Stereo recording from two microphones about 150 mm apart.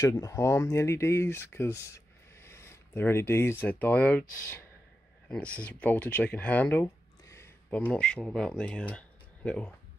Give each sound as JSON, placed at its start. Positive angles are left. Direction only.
{"t": 0.0, "sound": "speech", "side_deg": 20}